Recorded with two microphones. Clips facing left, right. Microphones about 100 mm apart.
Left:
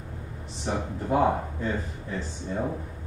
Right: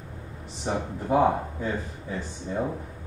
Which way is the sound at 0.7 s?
10° right (ahead or behind).